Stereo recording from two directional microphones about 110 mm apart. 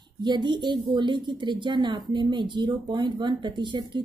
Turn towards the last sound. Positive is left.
turn(degrees=-45)  # may be behind; listen again after turning